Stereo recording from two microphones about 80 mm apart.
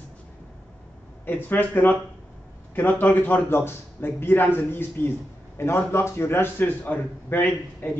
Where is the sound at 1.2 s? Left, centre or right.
Left.